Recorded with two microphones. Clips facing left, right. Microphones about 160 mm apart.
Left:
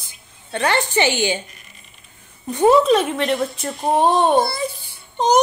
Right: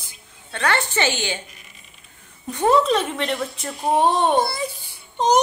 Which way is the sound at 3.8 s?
Centre (ahead or behind).